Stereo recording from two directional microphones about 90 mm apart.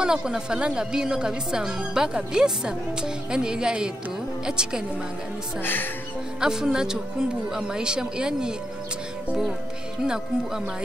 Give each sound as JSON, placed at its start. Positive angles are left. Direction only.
{"t": 0.0, "sound": "speech", "side_deg": -5}
{"t": 5.6, "sound": "speech", "side_deg": 20}
{"t": 6.4, "sound": "speech", "side_deg": -5}
{"t": 10.0, "sound": "speech", "side_deg": -5}